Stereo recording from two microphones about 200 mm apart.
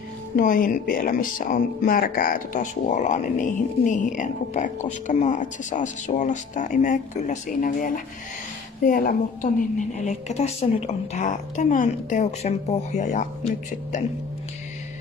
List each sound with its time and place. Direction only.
0.4 s a woman's voice: 45° left (ahead or behind)